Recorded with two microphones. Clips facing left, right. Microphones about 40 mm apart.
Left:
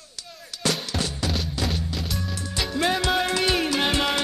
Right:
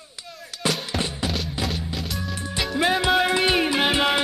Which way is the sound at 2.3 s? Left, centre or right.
Right.